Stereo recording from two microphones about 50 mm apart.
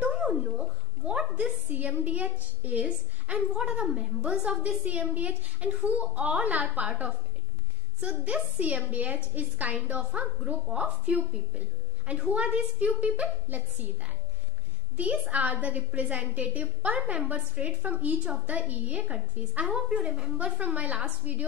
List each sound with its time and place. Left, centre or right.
0.0 s a sound: right
1.3 s a woman's voice: right
3.5 s a woman's voice: centre; by 9.8 s right
9.9 s a woman's voice: right
15.0 s a woman's voice: right